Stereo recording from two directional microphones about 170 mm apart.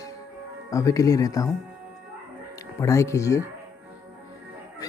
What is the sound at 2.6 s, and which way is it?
Speech, 15° left (ahead or behind).